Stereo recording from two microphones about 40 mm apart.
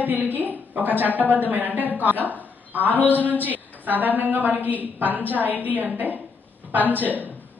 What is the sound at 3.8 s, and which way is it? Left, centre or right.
A woman's voice, right.